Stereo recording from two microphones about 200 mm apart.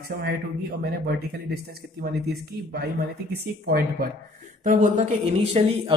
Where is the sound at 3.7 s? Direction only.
50° right (ahead or behind).